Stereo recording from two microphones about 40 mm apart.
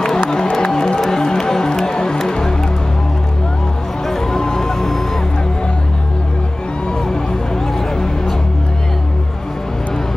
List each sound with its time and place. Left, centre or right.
0.3 s music: centre
4.1 s music: centre